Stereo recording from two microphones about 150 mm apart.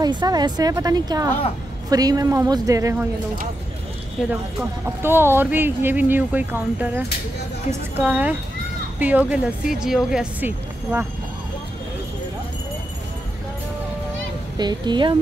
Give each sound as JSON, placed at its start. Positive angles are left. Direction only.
{"t": 0.0, "sound": "a woman's voice", "side_deg": -30}
{"t": 4.3, "sound": "speech", "side_deg": -15}
{"t": 8.0, "sound": "speech", "side_deg": -10}
{"t": 14.6, "sound": "a woman's voice", "side_deg": -30}